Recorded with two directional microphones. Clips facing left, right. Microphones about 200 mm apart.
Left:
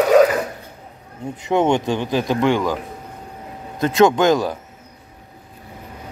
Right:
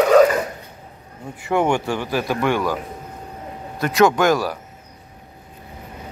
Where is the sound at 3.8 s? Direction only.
20° left (ahead or behind).